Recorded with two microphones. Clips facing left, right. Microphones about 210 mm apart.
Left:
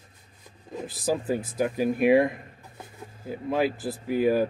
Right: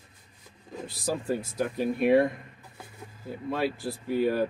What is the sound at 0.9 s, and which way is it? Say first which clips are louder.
Speech: left 3 dB; centre (ahead or behind).